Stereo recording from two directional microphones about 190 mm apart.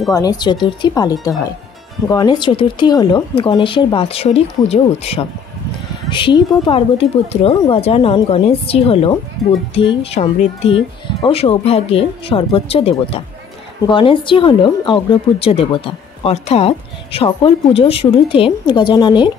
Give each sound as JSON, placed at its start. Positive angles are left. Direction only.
{"t": 0.1, "sound": "speech", "side_deg": 20}